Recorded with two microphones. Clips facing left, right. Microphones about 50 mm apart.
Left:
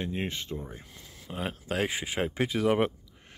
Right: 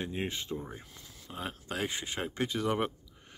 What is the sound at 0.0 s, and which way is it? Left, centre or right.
Speech, left.